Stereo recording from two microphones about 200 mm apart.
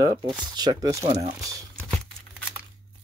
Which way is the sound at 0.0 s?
15° right (ahead or behind).